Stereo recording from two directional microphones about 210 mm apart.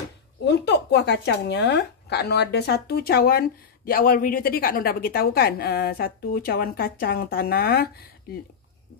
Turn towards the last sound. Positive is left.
turn(degrees=50)  # may be behind; listen again after turning